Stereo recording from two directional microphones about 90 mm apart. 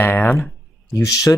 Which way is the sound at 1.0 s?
40° left (ahead or behind).